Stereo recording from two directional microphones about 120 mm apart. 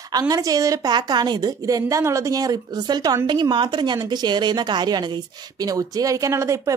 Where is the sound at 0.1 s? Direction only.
30° right (ahead or behind).